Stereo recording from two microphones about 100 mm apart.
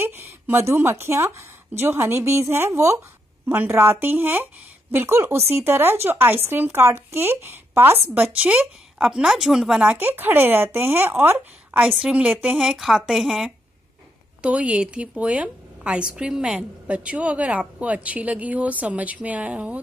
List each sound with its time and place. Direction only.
0.0 s a woman's voice: 20° right (ahead or behind)